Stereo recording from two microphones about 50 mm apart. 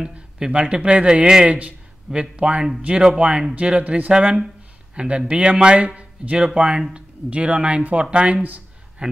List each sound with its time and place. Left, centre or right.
0.0 s speech: centre; by 8.6 s right
9.0 s speech: centre